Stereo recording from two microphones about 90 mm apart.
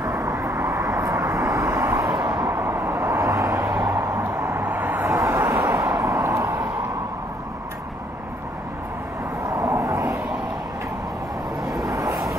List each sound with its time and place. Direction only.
0.0 s vehicle: 30° right (ahead or behind)
5.0 s vehicle: 40° right (ahead or behind)
9.5 s vehicle: 35° right (ahead or behind)
11.6 s vehicle: centre (ahead or behind)
11.9 s vehicle: 35° right (ahead or behind)